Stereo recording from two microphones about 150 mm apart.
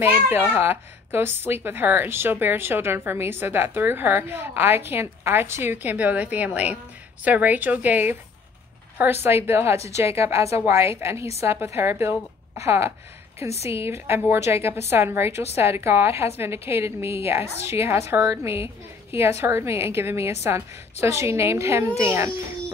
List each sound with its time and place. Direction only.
0.0 s a woman's voice: 15° right (ahead or behind)